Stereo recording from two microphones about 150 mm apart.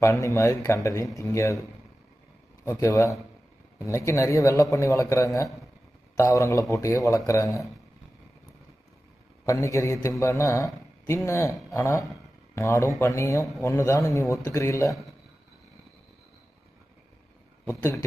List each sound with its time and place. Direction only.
0.0 s a man's voice: 20° left (ahead or behind)
2.6 s a man's voice: 20° left (ahead or behind)
9.5 s a man's voice: 20° left (ahead or behind)
17.6 s a man's voice: 15° left (ahead or behind)